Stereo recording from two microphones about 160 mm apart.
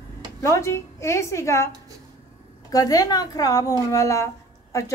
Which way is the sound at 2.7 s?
25° left (ahead or behind).